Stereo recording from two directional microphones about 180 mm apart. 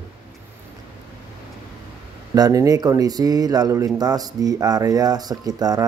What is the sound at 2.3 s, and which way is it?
Speech, 20° right (ahead or behind).